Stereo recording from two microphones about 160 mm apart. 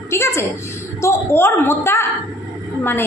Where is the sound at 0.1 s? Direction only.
15° left (ahead or behind).